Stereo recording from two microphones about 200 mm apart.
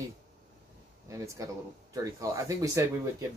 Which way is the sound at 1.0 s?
15° right (ahead or behind).